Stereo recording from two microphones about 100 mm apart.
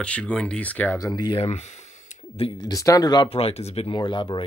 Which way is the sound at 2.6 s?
35° left (ahead or behind).